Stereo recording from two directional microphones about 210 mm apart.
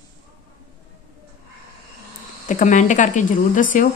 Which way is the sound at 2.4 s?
35° left (ahead or behind).